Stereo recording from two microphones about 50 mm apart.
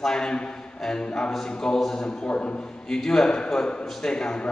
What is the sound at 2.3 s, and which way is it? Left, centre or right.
Speech, left.